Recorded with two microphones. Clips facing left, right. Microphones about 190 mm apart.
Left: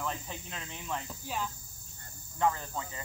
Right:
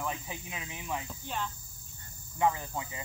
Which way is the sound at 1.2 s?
5° left (ahead or behind).